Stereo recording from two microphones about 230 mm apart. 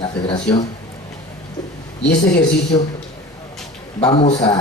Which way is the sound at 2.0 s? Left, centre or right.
Left.